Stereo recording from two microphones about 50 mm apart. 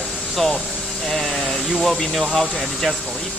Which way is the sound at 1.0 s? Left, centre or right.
Centre.